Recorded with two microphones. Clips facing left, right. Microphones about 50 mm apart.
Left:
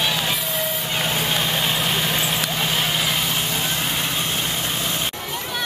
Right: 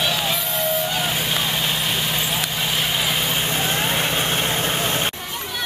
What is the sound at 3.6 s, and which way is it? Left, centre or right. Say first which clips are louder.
Vehicle: right 3 dB; right.